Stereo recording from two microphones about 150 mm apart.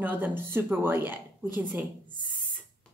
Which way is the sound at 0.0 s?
10° right (ahead or behind).